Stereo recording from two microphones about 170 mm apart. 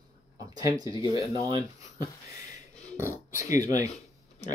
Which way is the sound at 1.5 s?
20° right (ahead or behind).